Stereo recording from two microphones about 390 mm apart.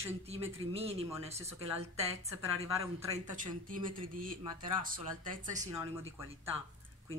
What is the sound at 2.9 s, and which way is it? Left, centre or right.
A man's voice, centre.